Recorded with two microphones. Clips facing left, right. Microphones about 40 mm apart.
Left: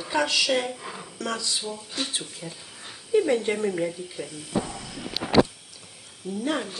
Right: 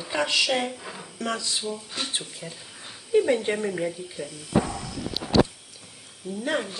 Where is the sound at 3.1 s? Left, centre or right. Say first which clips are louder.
Even; centre.